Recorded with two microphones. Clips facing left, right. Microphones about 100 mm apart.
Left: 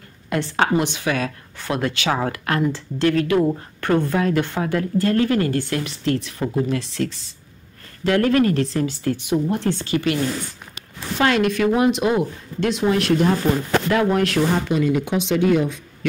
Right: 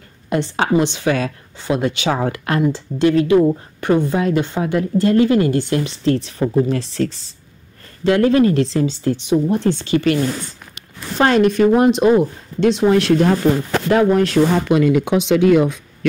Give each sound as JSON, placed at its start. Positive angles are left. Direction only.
{"t": 0.3, "sound": "speech", "side_deg": -25}
{"t": 8.0, "sound": "speech", "side_deg": -25}
{"t": 11.1, "sound": "speech", "side_deg": -35}
{"t": 12.8, "sound": "speech", "side_deg": -40}
{"t": 14.7, "sound": "speech", "side_deg": -80}